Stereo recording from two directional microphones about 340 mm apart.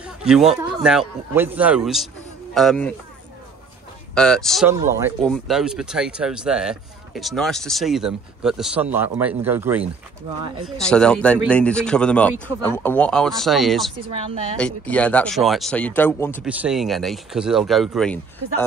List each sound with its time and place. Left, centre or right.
0.0 s speech: centre
4.1 s speech: centre
14.0 s a woman's voice: centre
14.6 s speech: centre